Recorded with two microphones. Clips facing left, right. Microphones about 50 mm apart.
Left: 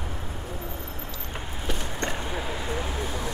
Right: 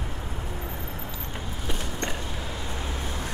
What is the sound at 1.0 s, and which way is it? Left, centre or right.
Vehicle, centre.